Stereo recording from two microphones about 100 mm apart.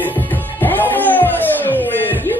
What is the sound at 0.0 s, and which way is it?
Music, 20° left (ahead or behind).